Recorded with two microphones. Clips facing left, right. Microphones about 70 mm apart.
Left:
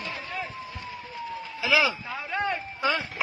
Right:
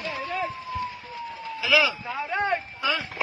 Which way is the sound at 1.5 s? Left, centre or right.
Left.